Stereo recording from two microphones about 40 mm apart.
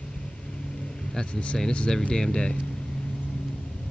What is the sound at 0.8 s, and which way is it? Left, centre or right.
Vehicle, centre.